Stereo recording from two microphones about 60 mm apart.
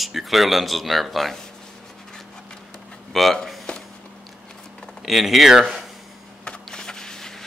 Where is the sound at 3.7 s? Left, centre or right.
Centre.